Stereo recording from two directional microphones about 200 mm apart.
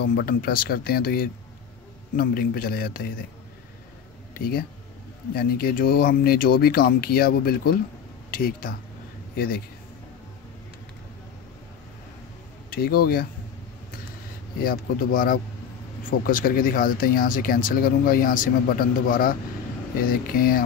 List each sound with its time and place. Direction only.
0.0 s speech: 50° left (ahead or behind)
4.3 s speech: 50° left (ahead or behind)
12.6 s speech: 50° left (ahead or behind)
14.6 s speech: 45° left (ahead or behind)